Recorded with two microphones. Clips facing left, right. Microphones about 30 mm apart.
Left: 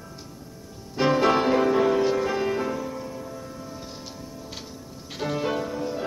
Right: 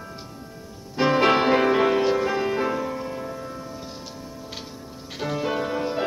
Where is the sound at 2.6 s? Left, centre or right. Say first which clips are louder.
Right 3 dB; right.